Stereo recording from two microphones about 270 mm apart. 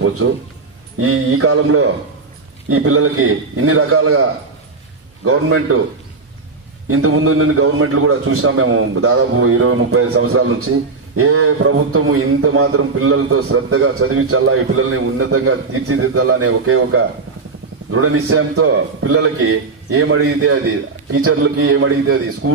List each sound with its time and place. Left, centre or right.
0.2 s a man's voice: right
6.9 s a man's voice: right